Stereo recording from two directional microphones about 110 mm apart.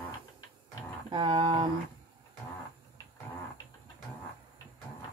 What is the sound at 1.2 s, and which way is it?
Speech, 60° right (ahead or behind).